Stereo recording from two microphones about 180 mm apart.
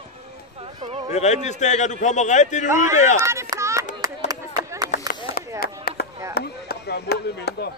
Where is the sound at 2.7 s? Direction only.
15° right (ahead or behind).